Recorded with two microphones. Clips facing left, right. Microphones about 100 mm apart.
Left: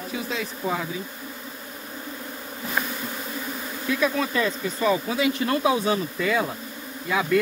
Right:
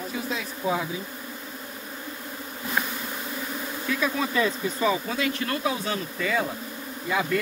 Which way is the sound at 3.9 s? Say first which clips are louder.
Left 3 dB; 5° left (ahead or behind).